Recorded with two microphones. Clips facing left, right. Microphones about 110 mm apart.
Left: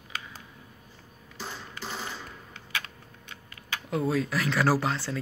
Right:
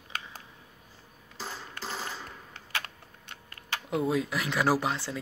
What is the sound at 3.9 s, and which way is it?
Speech, 20° right (ahead or behind).